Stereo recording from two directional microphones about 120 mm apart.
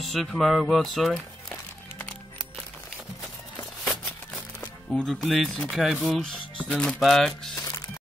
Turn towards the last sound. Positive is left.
turn(degrees=25)  # may be behind; listen again after turning